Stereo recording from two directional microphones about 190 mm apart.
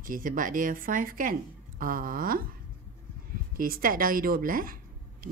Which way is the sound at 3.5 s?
50° right (ahead or behind).